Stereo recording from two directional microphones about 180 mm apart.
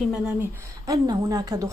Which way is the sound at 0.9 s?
20° right (ahead or behind).